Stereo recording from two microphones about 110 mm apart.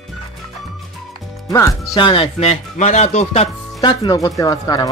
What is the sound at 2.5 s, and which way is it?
Speech, 90° left.